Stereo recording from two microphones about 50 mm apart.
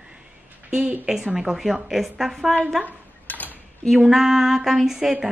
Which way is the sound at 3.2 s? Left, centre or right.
Left.